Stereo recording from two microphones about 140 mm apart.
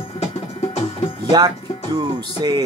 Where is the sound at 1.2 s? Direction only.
30° right (ahead or behind).